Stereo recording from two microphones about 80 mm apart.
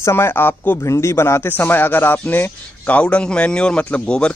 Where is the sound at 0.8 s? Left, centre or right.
Left.